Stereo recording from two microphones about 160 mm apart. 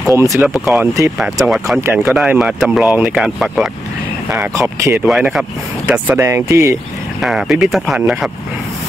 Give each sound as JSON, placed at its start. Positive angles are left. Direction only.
{"t": 0.1, "sound": "speech", "side_deg": -20}
{"t": 0.4, "sound": "speech", "side_deg": 0}
{"t": 4.6, "sound": "speech", "side_deg": -20}
{"t": 5.0, "sound": "speech", "side_deg": -5}
{"t": 7.2, "sound": "speech", "side_deg": 0}